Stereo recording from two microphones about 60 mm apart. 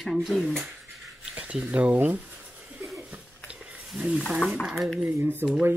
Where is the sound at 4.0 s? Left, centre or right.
Centre.